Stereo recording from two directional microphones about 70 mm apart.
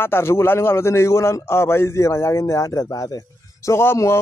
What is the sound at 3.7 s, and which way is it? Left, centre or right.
Speech, left.